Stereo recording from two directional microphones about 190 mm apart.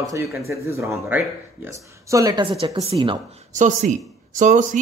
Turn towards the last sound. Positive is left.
turn(degrees=-40)  # may be behind; listen again after turning